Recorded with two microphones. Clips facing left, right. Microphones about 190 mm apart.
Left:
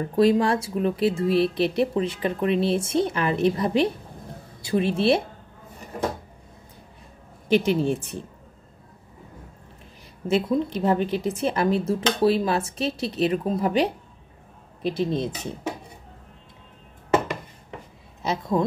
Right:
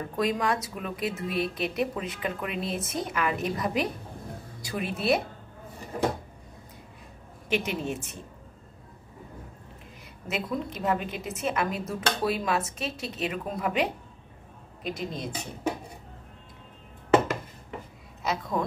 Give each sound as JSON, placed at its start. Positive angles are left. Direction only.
{"t": 0.1, "sound": "a woman's voice", "side_deg": 30}
{"t": 7.4, "sound": "a woman's voice", "side_deg": 35}
{"t": 10.2, "sound": "a woman's voice", "side_deg": 30}
{"t": 18.2, "sound": "speech", "side_deg": 30}